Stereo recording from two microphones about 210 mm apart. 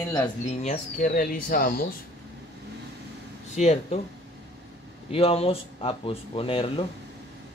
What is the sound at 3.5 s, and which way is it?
Speech, 35° left (ahead or behind).